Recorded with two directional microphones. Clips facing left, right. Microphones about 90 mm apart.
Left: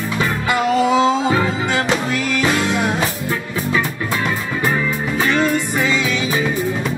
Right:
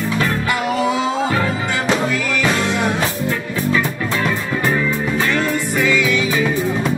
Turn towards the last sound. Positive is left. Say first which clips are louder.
# right 2 dB
turn(degrees=20)  # may be behind; listen again after turning